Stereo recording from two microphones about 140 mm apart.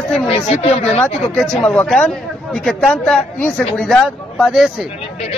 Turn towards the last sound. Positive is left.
turn(degrees=0)  # may be behind; listen again after turning